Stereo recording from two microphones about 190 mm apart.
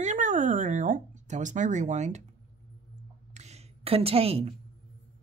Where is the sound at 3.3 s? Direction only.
35° right (ahead or behind).